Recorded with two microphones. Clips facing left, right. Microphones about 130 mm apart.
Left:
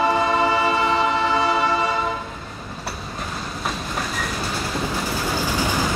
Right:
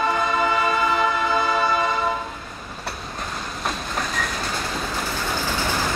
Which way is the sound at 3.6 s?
5° left (ahead or behind).